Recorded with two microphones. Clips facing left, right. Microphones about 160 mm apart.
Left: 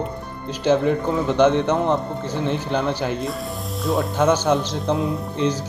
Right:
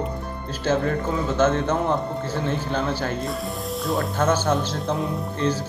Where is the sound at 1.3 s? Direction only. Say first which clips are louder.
Left 4 dB; 15° left (ahead or behind).